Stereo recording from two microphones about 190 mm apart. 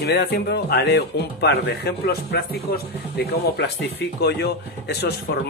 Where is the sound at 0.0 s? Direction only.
60° left (ahead or behind).